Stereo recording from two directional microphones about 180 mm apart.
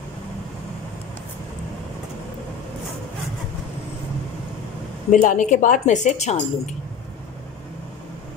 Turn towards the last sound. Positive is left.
turn(degrees=40)  # may be behind; listen again after turning